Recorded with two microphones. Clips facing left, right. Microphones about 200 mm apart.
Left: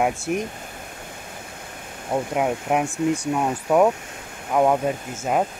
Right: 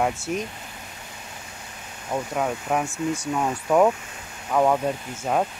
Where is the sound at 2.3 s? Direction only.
15° left (ahead or behind).